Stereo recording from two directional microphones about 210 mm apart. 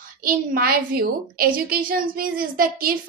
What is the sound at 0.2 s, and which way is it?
A woman's voice, 45° right (ahead or behind).